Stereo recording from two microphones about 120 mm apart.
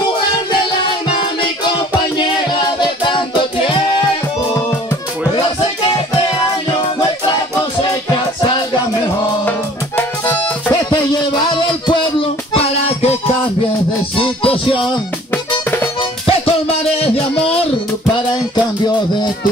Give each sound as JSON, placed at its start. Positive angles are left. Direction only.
{"t": 1.1, "sound": "music", "side_deg": 40}
{"t": 11.4, "sound": "music", "side_deg": 40}
{"t": 14.1, "sound": "music", "side_deg": 45}
{"t": 16.0, "sound": "music", "side_deg": 55}